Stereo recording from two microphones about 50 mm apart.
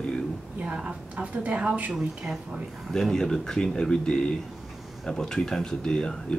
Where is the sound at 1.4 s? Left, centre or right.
Right.